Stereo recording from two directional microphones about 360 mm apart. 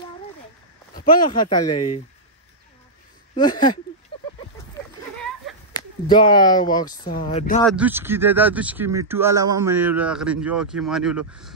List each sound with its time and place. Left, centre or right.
1.5 s speech: centre
3.3 s speech: centre
4.1 s a sound: centre
7.1 s speech: left
7.6 s speech: centre